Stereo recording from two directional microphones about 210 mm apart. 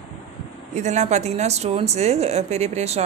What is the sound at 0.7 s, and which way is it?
Speech, 35° right (ahead or behind).